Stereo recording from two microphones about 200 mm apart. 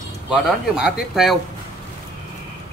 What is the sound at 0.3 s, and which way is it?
Speech, centre (ahead or behind).